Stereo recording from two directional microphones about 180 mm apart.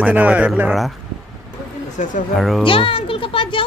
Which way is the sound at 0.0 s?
5° right (ahead or behind).